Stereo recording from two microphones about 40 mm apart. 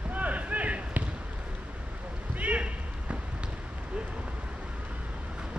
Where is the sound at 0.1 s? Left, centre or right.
Right.